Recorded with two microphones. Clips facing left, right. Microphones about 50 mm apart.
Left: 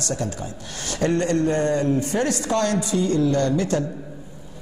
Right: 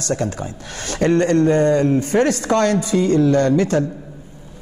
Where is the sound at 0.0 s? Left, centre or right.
Right.